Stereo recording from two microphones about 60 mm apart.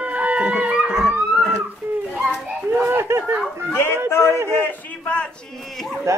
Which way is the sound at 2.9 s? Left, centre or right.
Right.